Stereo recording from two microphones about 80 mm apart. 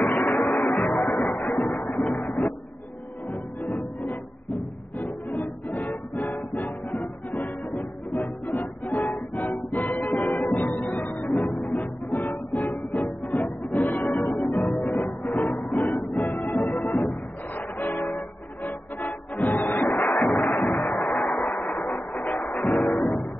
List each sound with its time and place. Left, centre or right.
0.0 s music: centre
0.3 s music: centre
1.4 s music: centre
1.9 s a sound: centre
2.1 s a sound: centre
3.6 s music: centre
10.4 s music: left
16.2 s music: left
20.1 s a sound: centre
21.4 s a sound: left
22.3 s music: centre
22.6 s music: centre